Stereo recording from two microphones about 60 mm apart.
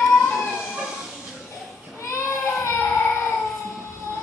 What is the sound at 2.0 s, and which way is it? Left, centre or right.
Child singing, left.